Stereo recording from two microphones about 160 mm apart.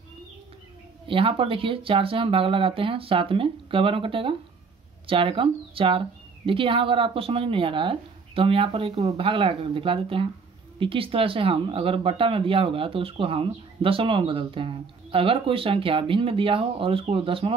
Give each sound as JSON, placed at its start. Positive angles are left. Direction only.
{"t": 1.0, "sound": "speech", "side_deg": -35}